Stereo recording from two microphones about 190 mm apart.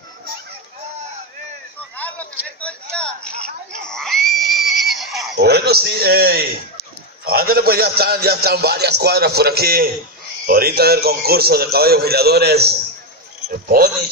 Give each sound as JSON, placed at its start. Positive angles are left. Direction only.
{"t": 2.0, "sound": "a sound", "side_deg": 5}
{"t": 3.8, "sound": "neigh", "side_deg": 5}
{"t": 5.3, "sound": "a man's voice", "side_deg": -60}